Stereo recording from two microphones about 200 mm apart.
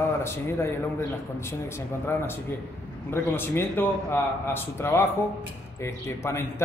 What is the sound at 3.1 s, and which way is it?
A man's voice, 10° left (ahead or behind).